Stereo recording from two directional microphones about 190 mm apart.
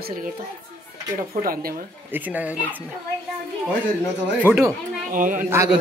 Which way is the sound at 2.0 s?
10° right (ahead or behind).